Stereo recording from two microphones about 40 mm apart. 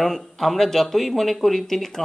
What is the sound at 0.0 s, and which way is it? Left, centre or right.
Speech, centre.